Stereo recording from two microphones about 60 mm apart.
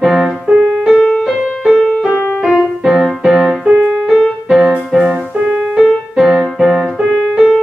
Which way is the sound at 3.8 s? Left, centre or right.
Centre.